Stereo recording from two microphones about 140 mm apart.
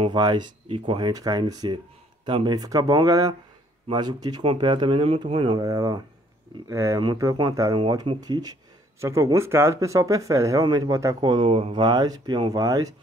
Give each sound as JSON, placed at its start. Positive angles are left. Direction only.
{"t": 0.0, "sound": "speech", "side_deg": -35}
{"t": 5.6, "sound": "speech", "side_deg": -25}
{"t": 11.1, "sound": "speech", "side_deg": -35}